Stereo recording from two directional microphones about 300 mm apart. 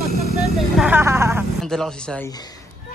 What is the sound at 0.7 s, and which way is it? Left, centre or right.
A woman's voice, centre.